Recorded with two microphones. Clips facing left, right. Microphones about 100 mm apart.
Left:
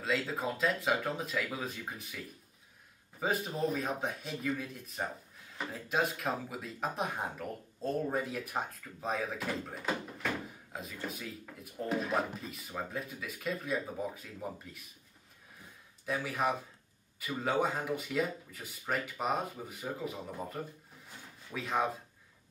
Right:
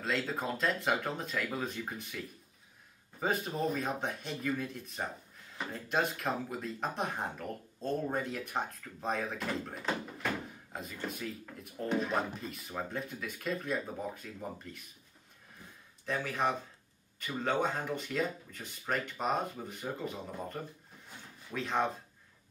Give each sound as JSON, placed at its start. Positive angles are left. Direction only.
{"t": 0.0, "sound": "speech", "side_deg": 0}
{"t": 16.1, "sound": "speech", "side_deg": 5}